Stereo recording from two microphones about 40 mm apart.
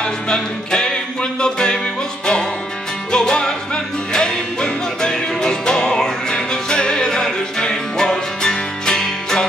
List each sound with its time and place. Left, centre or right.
0.0 s music: centre
3.1 s music: centre